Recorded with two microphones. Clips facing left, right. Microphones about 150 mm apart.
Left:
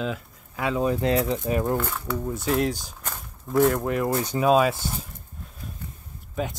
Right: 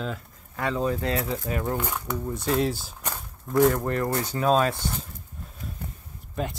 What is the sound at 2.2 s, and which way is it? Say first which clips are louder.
Speech: left 1 dB; centre (ahead or behind).